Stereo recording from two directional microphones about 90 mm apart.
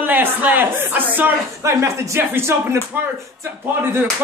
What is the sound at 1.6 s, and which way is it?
Speech, 30° right (ahead or behind).